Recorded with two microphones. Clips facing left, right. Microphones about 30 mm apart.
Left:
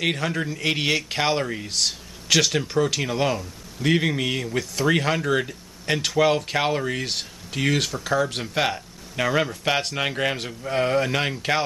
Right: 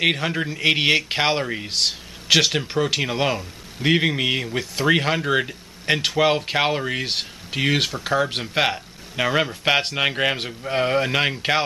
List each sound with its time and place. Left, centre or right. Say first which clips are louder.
0.0 s speech: right 3 dB; right